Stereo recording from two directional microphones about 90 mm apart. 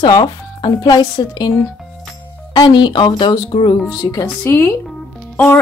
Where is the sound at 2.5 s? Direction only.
55° left (ahead or behind).